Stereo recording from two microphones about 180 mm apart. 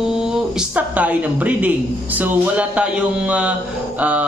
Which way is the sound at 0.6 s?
10° right (ahead or behind).